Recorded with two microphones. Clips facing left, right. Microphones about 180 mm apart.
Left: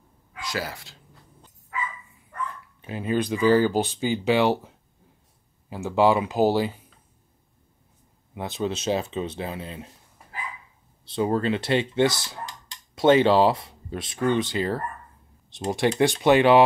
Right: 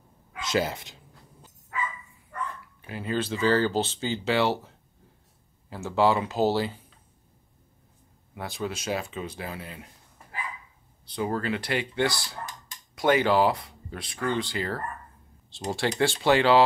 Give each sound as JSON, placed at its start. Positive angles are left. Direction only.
{"t": 0.4, "sound": "speech", "side_deg": -20}
{"t": 2.8, "sound": "speech", "side_deg": 20}
{"t": 8.4, "sound": "speech", "side_deg": 20}
{"t": 11.1, "sound": "speech", "side_deg": 25}